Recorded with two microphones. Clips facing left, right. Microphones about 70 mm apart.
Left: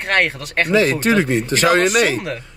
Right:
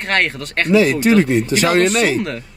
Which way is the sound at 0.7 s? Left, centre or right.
Left.